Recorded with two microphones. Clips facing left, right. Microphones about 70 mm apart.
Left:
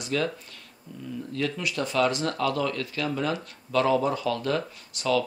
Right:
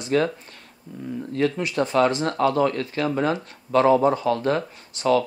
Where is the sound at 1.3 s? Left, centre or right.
Right.